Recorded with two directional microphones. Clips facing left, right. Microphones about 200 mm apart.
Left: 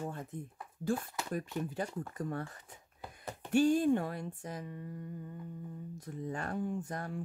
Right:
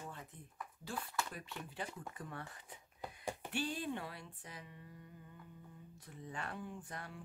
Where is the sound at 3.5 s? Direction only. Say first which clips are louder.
Left 15 dB; 45° left (ahead or behind).